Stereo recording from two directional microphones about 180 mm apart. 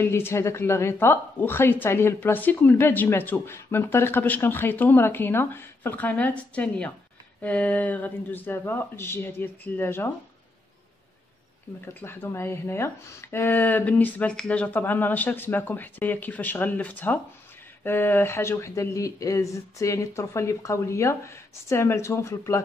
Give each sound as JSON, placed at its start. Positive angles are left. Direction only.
{"t": 0.0, "sound": "a woman's voice", "side_deg": 15}
{"t": 11.8, "sound": "a woman's voice", "side_deg": 15}